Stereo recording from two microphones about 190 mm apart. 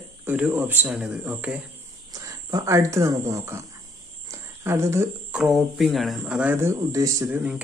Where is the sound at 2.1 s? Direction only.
20° right (ahead or behind).